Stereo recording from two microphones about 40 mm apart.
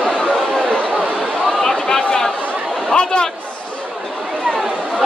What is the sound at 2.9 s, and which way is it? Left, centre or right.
Chatter, left.